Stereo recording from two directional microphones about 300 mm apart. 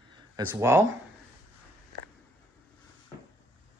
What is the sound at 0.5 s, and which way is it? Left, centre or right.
Speech, centre.